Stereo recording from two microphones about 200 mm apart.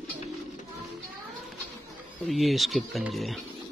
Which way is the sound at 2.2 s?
Centre (ahead or behind).